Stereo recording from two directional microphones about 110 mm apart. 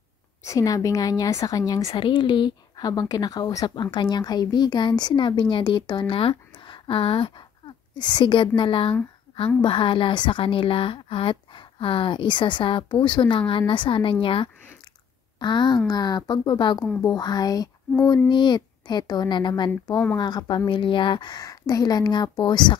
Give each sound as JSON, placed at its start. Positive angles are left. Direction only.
{"t": 0.4, "sound": "a woman's voice", "side_deg": 30}
{"t": 1.9, "sound": "a woman's voice", "side_deg": 50}